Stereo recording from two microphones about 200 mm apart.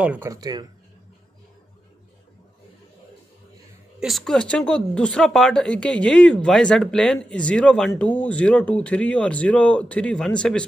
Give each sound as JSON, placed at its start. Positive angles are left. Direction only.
{"t": 0.0, "sound": "speech", "side_deg": -10}
{"t": 4.0, "sound": "speech", "side_deg": 0}